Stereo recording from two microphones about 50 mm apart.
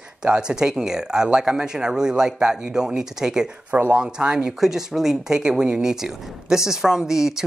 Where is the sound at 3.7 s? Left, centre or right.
Right.